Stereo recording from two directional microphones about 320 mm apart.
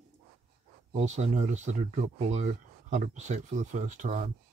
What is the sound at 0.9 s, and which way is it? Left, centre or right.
Speech, right.